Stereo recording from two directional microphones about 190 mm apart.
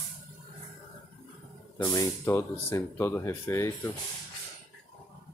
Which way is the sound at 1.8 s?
15° left (ahead or behind).